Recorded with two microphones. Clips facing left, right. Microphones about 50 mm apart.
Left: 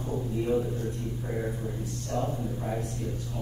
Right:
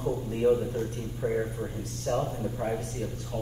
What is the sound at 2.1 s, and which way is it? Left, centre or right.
Speech, right.